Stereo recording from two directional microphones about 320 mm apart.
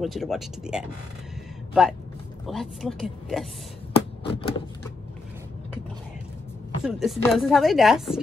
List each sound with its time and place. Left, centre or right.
0.0 s speech: centre
3.9 s a sound: centre
6.8 s speech: centre